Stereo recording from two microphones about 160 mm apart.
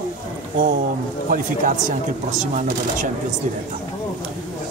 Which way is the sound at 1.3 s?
55° right (ahead or behind).